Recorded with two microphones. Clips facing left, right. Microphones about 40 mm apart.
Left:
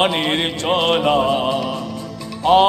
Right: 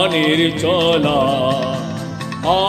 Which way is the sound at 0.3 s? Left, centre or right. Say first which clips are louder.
Right 5 dB; centre.